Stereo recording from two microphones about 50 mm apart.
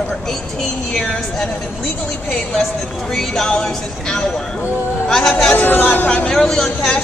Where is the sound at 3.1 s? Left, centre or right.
Centre.